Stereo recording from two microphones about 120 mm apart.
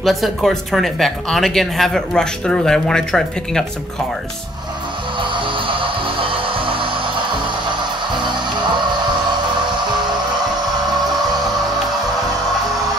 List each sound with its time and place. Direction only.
0.0 s speech: centre (ahead or behind)
5.2 s music: 45° right (ahead or behind)
8.2 s music: 40° right (ahead or behind)